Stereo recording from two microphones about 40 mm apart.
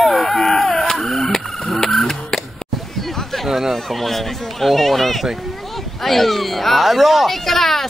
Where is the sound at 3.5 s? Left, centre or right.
Centre.